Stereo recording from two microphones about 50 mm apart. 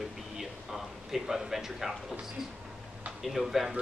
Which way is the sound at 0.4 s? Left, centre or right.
Centre.